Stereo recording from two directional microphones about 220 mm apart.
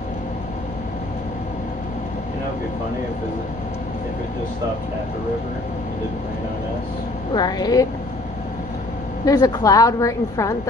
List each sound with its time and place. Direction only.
7.3 s a woman's voice: 20° left (ahead or behind)
9.2 s a woman's voice: 15° left (ahead or behind)